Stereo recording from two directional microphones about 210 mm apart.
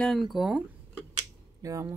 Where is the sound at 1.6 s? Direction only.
15° right (ahead or behind).